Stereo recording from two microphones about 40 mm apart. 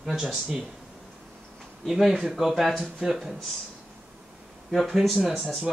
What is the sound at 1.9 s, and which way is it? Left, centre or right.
A man's voice, centre.